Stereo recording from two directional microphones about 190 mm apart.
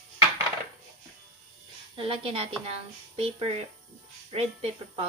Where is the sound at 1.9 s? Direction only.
30° right (ahead or behind).